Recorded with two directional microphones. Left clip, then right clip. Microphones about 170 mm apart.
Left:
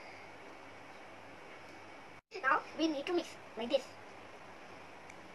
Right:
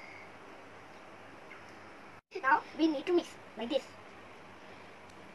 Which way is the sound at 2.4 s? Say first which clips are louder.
Right 4 dB; 25° left (ahead or behind).